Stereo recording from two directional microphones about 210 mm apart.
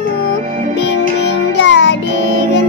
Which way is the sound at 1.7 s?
55° left (ahead or behind).